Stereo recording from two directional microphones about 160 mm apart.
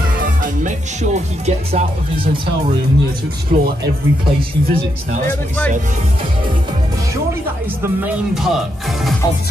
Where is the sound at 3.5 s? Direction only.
45° right (ahead or behind).